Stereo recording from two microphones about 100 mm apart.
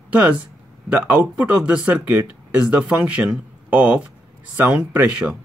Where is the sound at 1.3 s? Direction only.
10° right (ahead or behind).